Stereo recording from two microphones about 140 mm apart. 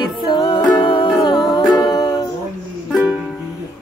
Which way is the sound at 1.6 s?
Centre (ahead or behind).